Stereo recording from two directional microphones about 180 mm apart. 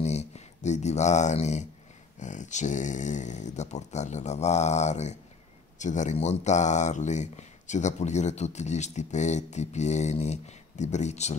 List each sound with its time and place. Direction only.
0.0 s speech: 40° left (ahead or behind)